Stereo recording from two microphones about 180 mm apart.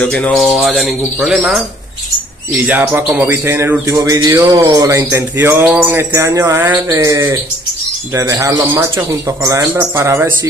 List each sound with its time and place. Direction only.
0.0 s speech: 5° left (ahead or behind)
2.6 s speech: 10° right (ahead or behind)